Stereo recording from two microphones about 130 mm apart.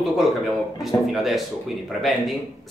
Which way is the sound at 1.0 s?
Centre (ahead or behind).